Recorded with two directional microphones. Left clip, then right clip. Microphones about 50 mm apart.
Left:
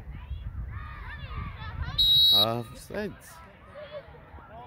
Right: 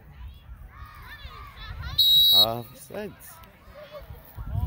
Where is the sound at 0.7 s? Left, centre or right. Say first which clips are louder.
Left 2 dB; right.